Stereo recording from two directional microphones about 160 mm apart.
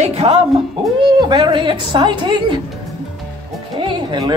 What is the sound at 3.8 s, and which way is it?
Music, 30° right (ahead or behind).